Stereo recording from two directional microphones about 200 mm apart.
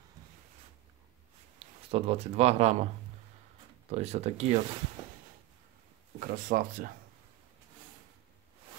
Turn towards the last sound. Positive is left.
turn(degrees=-45)  # may be behind; listen again after turning